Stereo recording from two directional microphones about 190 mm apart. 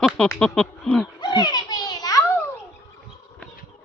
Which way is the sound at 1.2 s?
20° left (ahead or behind).